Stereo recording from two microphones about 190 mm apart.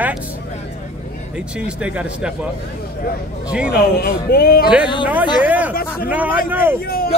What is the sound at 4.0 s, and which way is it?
Speech, 50° left (ahead or behind).